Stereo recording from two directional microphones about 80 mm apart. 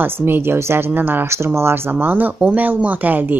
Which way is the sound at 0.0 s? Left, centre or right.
Right.